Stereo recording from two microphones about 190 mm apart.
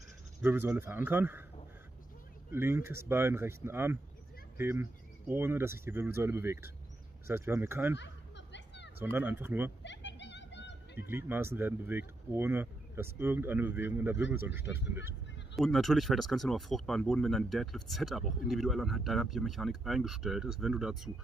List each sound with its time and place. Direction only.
0.4 s speech: 10° right (ahead or behind)
2.5 s speech: 10° right (ahead or behind)
8.0 s a sound: 70° left (ahead or behind)
9.0 s speech: 10° right (ahead or behind)
9.8 s vehicle: 70° left (ahead or behind)
11.0 s speech: 10° right (ahead or behind)
15.5 s speech: centre (ahead or behind)